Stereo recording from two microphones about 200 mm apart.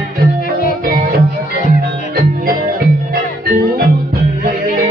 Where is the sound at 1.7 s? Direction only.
45° right (ahead or behind).